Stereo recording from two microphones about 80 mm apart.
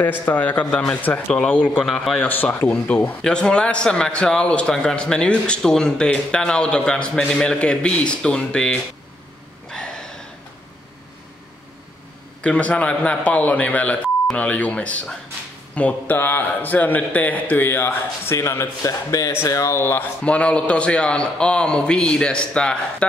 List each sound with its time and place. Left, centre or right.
0.0 s a man's voice: left
1.8 s a man's voice: centre
2.1 s a man's voice: left
9.7 s a sound: centre
12.4 s a man's voice: centre; by 20.1 s left
20.2 s a man's voice: centre